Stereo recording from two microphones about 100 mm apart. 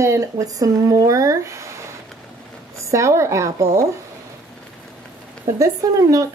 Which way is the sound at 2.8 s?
30° right (ahead or behind).